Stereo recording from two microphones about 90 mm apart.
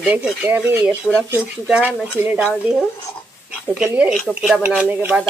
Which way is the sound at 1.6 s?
15° right (ahead or behind).